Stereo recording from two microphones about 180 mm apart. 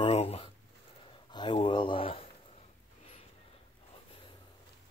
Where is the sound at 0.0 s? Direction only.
35° left (ahead or behind).